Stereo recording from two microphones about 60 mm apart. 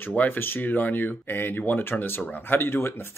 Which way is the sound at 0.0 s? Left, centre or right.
Left.